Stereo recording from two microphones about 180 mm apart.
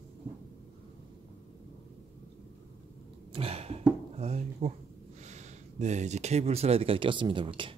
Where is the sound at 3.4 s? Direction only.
35° right (ahead or behind).